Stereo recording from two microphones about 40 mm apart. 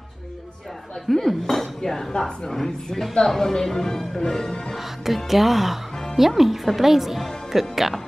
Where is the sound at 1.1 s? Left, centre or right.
Centre.